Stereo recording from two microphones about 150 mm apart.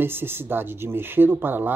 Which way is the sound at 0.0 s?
15° right (ahead or behind).